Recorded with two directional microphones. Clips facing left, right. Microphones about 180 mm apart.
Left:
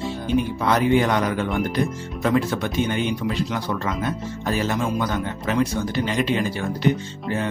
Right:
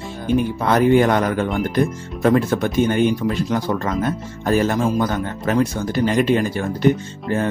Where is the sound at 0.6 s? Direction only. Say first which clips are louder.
Right 5 dB; 50° right (ahead or behind).